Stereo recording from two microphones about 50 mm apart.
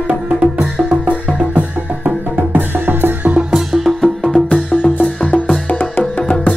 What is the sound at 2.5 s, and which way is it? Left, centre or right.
Music, right.